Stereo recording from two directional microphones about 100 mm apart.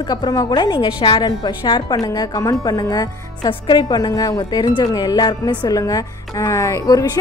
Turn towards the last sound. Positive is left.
turn(degrees=35)  # may be behind; listen again after turning